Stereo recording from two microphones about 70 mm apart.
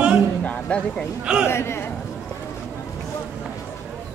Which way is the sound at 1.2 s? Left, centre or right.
Centre.